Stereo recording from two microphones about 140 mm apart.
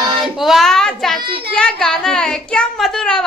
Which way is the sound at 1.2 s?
40° right (ahead or behind).